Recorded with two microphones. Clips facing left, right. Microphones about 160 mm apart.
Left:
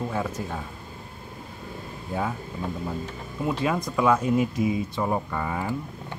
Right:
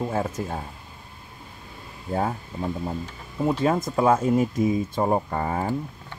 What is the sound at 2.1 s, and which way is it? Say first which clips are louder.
Speech: right 3 dB; 40° right (ahead or behind).